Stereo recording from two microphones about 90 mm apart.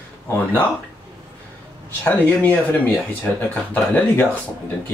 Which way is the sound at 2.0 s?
20° left (ahead or behind).